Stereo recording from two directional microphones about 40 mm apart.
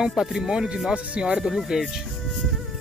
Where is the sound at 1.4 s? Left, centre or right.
Centre.